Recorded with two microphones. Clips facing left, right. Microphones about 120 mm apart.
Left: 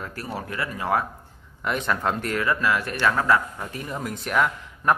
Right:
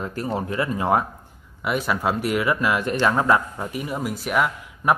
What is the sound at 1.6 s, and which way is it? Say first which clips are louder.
Speech: right 2 dB; 5° right (ahead or behind).